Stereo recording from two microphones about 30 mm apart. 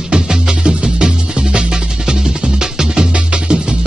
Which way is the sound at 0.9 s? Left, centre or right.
Right.